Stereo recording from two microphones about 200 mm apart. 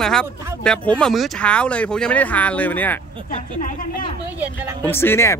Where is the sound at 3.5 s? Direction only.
40° left (ahead or behind).